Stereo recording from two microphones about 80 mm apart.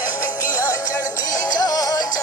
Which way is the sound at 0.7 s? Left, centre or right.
Left.